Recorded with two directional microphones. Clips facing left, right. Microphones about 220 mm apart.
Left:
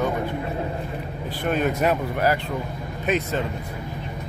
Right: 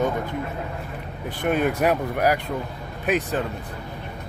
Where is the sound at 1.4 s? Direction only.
15° right (ahead or behind).